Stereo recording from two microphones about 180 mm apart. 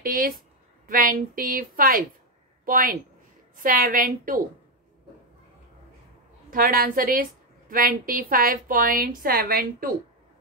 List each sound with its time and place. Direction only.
0.0 s a woman's voice: 55° right (ahead or behind)
6.5 s a woman's voice: 55° right (ahead or behind)